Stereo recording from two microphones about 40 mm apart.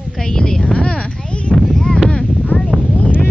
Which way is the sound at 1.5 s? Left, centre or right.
Centre.